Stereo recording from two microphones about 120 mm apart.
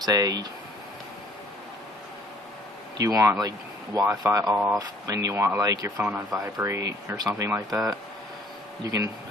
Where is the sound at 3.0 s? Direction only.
20° right (ahead or behind).